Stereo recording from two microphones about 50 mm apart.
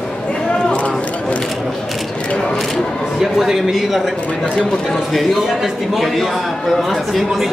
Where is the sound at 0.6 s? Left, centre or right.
Left.